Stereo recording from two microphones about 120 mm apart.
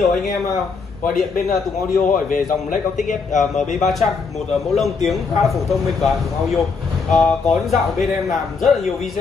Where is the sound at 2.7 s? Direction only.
90° left.